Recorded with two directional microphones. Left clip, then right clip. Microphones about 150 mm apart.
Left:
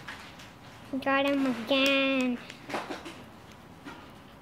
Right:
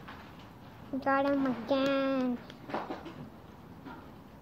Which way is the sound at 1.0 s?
60° left (ahead or behind).